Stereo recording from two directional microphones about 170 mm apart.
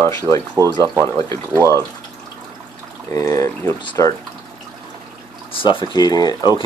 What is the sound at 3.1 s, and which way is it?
Speech, 20° left (ahead or behind).